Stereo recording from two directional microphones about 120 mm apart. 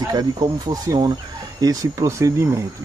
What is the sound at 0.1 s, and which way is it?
Speech, 35° right (ahead or behind).